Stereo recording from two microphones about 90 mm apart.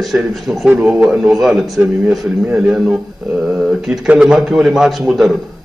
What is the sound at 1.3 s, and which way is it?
A man's voice, 5° right (ahead or behind).